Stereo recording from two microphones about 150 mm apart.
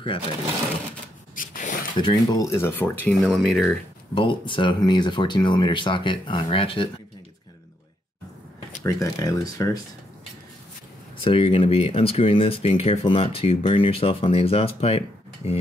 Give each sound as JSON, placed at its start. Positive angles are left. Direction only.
{"t": 1.3, "sound": "a sound", "side_deg": 65}
{"t": 2.0, "sound": "speech", "side_deg": 30}
{"t": 2.5, "sound": "speech", "side_deg": 15}
{"t": 3.3, "sound": "speech", "side_deg": 0}
{"t": 4.1, "sound": "speech", "side_deg": 35}
{"t": 8.8, "sound": "speech", "side_deg": 20}
{"t": 11.2, "sound": "speech", "side_deg": 35}